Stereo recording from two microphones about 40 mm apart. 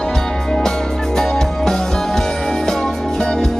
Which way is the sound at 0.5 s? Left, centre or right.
Centre.